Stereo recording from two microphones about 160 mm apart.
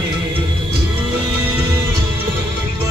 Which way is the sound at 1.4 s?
15° right (ahead or behind).